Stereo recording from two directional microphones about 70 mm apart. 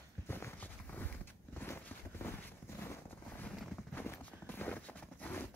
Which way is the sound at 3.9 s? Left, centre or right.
Left.